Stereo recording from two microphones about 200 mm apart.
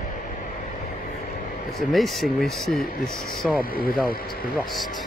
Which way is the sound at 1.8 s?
Centre (ahead or behind).